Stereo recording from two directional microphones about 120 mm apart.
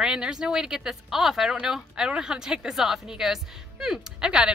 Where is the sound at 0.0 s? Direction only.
5° right (ahead or behind).